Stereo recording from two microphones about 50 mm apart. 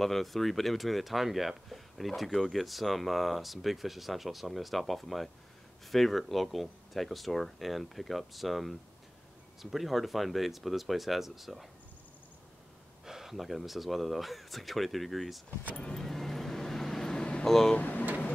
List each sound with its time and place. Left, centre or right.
0.0 s speech: centre
13.0 s speech: centre
15.7 s vehicle: centre
16.1 s vehicle: centre
17.5 s vehicle: centre
17.7 s speech: left